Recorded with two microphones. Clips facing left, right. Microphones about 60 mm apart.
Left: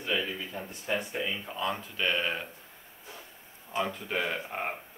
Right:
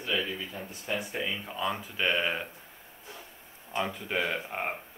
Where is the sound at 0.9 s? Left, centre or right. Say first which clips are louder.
Left 1 dB; centre.